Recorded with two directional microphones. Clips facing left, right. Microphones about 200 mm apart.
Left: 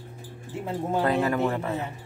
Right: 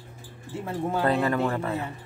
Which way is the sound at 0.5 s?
20° left (ahead or behind).